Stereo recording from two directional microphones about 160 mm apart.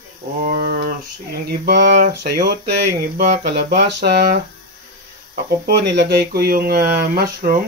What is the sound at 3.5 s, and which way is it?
Speech, 85° right.